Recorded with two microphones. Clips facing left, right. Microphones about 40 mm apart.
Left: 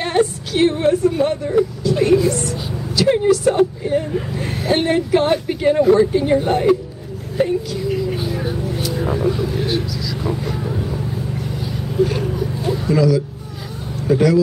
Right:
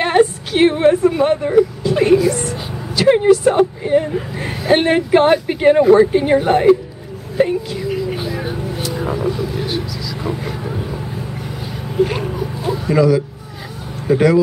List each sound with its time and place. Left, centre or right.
0.0 s a woman's voice: right
7.9 s vehicle: centre
8.8 s vehicle: centre
9.7 s speech: centre
10.2 s speech: centre
12.0 s speech: right
12.4 s speech: centre
12.9 s speech: right